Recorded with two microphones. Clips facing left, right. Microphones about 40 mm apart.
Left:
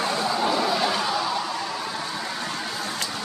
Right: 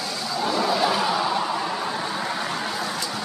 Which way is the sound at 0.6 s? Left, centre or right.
Centre.